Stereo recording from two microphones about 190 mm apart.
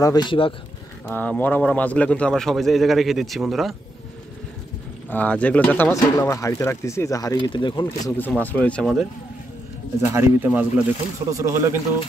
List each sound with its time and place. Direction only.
0.0 s speech: 20° left (ahead or behind)
1.0 s speech: 10° left (ahead or behind)
5.1 s speech: 5° left (ahead or behind); by 8.1 s 25° left (ahead or behind)
8.2 s speech: 10° left (ahead or behind)
10.1 s speech: 10° right (ahead or behind)